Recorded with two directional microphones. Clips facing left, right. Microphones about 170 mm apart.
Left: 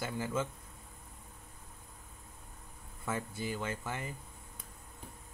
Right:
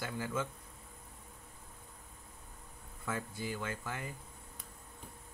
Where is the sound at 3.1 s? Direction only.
20° left (ahead or behind).